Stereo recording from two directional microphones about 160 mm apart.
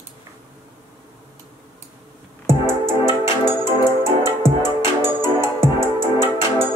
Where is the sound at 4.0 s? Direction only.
15° right (ahead or behind).